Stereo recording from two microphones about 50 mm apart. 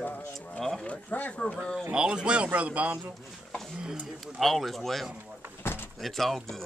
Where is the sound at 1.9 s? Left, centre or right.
Centre.